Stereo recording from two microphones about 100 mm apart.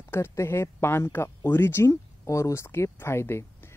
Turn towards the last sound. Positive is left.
turn(degrees=25)  # may be behind; listen again after turning